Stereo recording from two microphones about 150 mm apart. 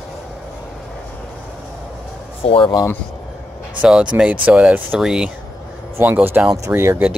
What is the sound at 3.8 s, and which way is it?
Speech, 5° right (ahead or behind).